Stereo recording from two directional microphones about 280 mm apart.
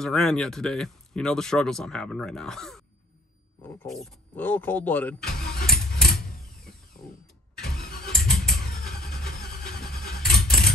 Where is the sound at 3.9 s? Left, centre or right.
Centre.